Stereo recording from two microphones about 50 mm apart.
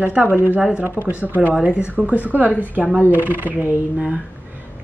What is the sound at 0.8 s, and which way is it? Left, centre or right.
Speech, right.